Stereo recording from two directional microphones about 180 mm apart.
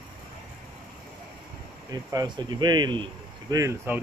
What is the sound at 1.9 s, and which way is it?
Speech, 20° right (ahead or behind).